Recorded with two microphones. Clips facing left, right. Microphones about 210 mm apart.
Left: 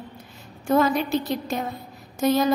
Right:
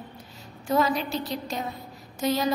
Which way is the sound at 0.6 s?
50° left (ahead or behind).